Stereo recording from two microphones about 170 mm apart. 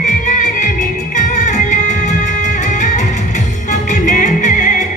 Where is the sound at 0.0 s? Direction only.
45° left (ahead or behind).